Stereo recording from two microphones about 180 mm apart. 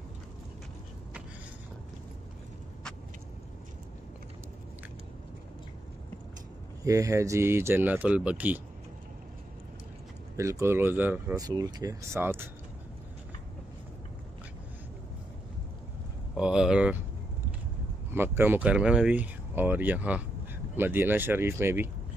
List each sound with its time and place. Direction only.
6.8 s speech: 20° right (ahead or behind)
10.3 s speech: 15° right (ahead or behind)
11.3 s speech: 20° right (ahead or behind)
16.3 s speech: 5° right (ahead or behind)
18.1 s speech: 10° right (ahead or behind)